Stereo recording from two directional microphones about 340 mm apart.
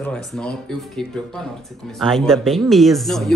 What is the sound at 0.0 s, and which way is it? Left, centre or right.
A woman's voice, centre.